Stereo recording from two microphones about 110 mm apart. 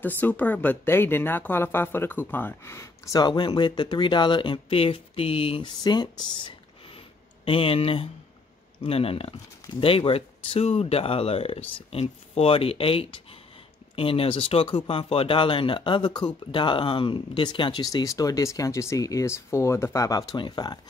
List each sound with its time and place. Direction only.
0.0 s speech: 15° left (ahead or behind); by 5.7 s 60° left (ahead or behind)
7.4 s speech: 55° left (ahead or behind)
17.9 s speech: 30° left (ahead or behind)